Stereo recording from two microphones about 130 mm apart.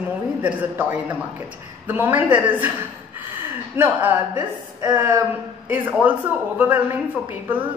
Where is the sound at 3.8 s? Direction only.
15° right (ahead or behind).